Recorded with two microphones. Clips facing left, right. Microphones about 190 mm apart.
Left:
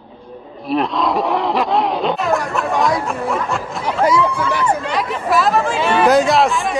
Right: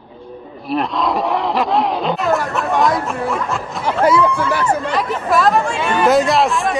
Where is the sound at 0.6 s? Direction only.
Centre (ahead or behind).